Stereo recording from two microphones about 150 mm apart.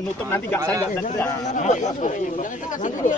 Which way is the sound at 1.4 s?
55° left (ahead or behind).